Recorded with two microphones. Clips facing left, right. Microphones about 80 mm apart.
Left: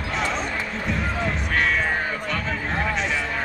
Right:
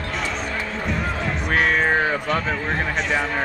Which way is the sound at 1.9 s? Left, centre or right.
Right.